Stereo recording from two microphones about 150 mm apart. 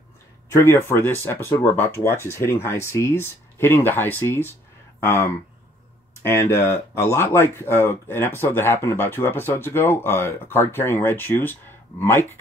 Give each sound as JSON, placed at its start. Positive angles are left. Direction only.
{"t": 0.5, "sound": "speech", "side_deg": 15}